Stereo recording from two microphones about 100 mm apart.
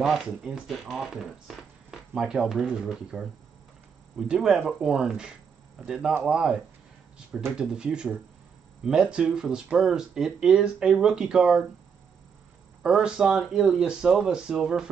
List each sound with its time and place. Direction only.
0.0 s speech: centre (ahead or behind)
12.8 s speech: 10° right (ahead or behind)